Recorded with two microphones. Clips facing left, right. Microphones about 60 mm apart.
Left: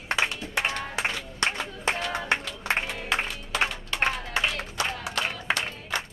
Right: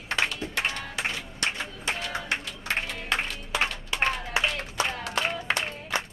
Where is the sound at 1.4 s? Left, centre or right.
Left.